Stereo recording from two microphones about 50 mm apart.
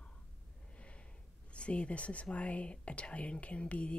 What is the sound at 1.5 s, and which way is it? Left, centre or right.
Speech, left.